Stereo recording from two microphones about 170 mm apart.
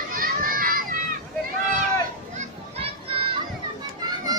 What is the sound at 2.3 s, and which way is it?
Children playing, 35° right (ahead or behind).